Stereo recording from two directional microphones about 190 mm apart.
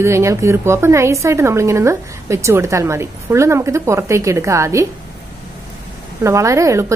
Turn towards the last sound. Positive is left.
turn(degrees=-15)  # may be behind; listen again after turning